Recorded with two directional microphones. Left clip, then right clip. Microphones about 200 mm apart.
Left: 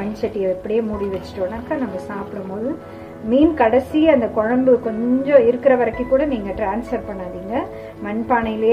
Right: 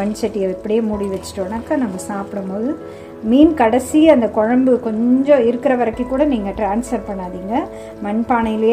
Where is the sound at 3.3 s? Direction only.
35° right (ahead or behind).